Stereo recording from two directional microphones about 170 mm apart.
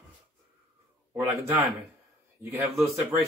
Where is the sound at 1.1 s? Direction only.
15° right (ahead or behind).